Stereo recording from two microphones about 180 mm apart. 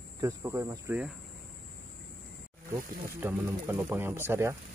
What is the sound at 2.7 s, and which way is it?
Speech, 15° right (ahead or behind).